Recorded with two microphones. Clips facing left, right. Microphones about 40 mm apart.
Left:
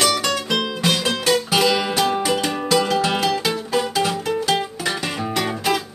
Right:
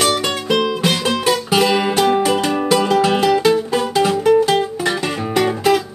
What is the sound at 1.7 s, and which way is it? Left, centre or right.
Music, centre.